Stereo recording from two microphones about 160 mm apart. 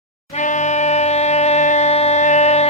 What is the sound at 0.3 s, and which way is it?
Music, 50° left (ahead or behind).